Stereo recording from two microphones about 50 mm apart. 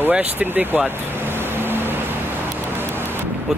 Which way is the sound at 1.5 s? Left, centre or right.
Right.